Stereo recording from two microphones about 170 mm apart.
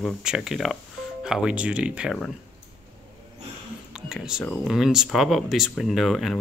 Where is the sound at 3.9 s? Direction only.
5° right (ahead or behind).